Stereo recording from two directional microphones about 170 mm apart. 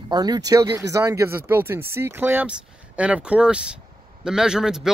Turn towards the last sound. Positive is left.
turn(degrees=-5)  # may be behind; listen again after turning